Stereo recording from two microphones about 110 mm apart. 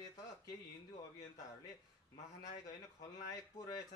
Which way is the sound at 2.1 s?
35° left (ahead or behind).